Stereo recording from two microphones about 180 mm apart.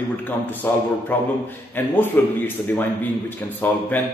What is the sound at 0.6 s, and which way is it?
Speech, 10° left (ahead or behind).